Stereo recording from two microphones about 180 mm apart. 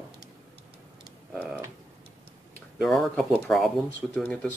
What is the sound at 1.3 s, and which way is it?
Speech, 10° right (ahead or behind).